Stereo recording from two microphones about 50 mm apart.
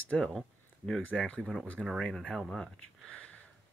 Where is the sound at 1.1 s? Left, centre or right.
Left.